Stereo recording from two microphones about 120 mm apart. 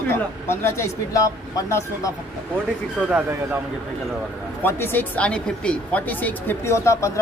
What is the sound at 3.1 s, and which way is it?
Speech, 15° right (ahead or behind).